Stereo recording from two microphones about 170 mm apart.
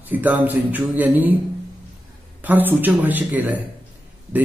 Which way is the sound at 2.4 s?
10° right (ahead or behind).